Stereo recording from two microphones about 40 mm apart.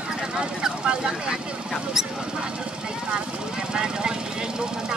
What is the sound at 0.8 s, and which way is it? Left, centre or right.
Speech, right.